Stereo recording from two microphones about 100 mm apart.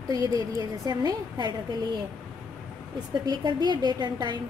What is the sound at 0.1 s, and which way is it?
A woman's voice, 35° right (ahead or behind).